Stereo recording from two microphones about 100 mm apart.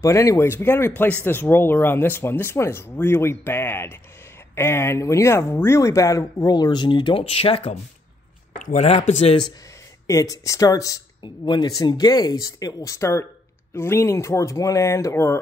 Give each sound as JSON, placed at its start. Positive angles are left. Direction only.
{"t": 0.0, "sound": "speech", "side_deg": 30}
{"t": 7.2, "sound": "speech", "side_deg": 75}
{"t": 8.7, "sound": "speech", "side_deg": 90}
{"t": 10.0, "sound": "speech", "side_deg": 35}